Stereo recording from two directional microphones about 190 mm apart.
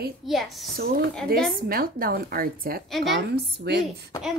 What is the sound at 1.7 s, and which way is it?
Speech, 50° right (ahead or behind).